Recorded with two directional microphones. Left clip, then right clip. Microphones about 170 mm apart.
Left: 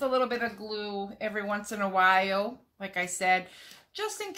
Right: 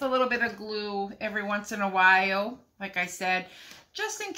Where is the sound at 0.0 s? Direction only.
30° left (ahead or behind).